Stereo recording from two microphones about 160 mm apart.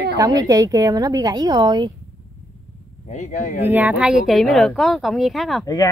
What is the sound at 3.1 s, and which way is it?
Speech, 50° left (ahead or behind).